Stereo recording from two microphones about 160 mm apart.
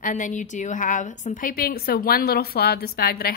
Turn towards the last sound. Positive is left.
turn(degrees=75)  # may be behind; listen again after turning